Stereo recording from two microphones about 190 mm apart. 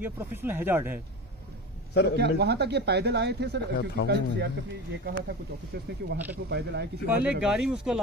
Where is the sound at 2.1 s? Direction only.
60° right (ahead or behind).